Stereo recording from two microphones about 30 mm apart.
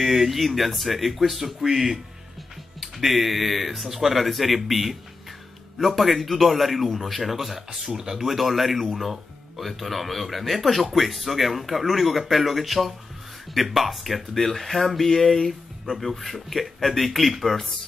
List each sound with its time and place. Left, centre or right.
0.0 s speech: centre
14.3 s speech: centre
15.0 s speech: centre